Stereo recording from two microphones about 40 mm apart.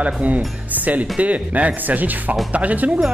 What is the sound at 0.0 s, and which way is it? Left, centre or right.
Speech, right.